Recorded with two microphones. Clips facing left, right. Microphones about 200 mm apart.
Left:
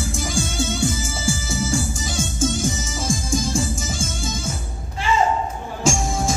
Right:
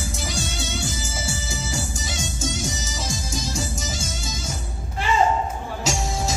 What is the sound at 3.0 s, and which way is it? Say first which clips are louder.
Music: left 8 dB; 50° left (ahead or behind).